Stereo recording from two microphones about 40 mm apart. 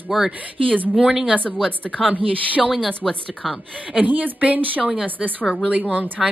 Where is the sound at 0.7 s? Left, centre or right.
Right.